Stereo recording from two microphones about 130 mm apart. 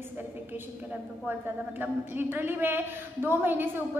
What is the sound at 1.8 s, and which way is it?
A woman's voice, 15° right (ahead or behind).